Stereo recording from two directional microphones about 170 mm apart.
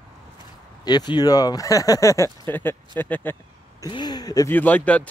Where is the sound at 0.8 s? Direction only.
25° left (ahead or behind).